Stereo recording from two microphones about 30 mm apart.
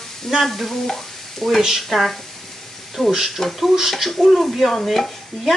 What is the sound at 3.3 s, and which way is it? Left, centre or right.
Speech, centre.